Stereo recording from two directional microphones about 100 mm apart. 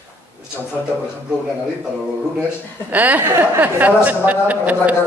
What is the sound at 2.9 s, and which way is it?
A woman's voice, 15° right (ahead or behind).